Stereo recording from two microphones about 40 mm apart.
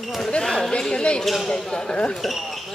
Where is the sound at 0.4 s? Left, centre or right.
Centre.